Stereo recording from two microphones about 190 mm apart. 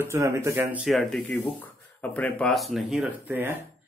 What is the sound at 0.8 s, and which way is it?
Speech, centre (ahead or behind).